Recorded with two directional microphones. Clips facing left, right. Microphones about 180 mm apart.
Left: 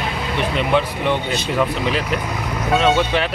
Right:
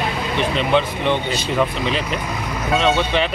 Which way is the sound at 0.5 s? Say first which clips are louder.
Even; 10° left (ahead or behind).